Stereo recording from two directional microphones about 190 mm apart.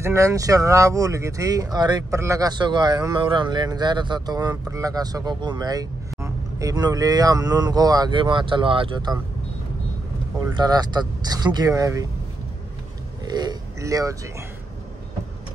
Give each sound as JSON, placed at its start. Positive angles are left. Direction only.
{"t": 0.0, "sound": "speech", "side_deg": -15}
{"t": 10.4, "sound": "speech", "side_deg": -20}
{"t": 13.2, "sound": "speech", "side_deg": -20}